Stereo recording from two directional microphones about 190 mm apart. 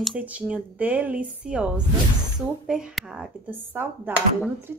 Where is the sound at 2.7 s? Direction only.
5° right (ahead or behind).